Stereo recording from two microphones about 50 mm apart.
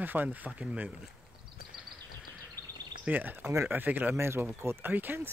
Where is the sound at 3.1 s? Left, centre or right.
Right.